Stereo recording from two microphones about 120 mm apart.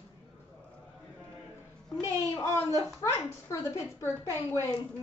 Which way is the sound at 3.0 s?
25° left (ahead or behind).